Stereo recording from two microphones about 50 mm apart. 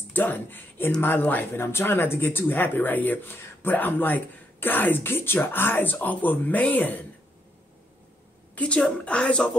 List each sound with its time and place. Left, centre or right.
0.1 s speech: left
1.4 s speech: left
8.5 s a woman's voice: centre